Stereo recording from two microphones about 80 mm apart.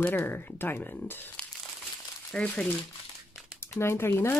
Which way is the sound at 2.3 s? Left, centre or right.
Centre.